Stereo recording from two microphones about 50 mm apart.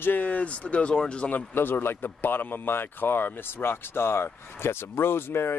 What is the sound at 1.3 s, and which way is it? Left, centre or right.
Speech, left.